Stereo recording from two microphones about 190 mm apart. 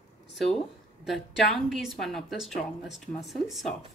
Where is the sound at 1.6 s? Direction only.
Centre (ahead or behind).